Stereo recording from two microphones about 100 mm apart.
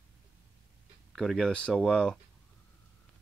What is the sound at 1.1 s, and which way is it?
Speech, 5° left (ahead or behind).